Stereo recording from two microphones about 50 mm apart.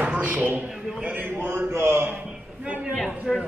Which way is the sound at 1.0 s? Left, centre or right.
Right.